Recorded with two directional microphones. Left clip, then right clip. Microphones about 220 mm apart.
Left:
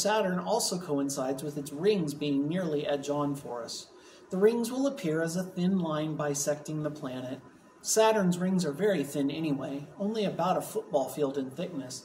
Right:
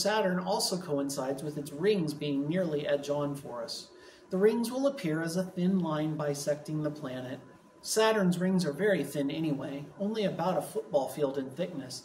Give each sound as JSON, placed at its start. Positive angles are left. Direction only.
{"t": 0.0, "sound": "speech", "side_deg": 10}
{"t": 4.3, "sound": "speech", "side_deg": 10}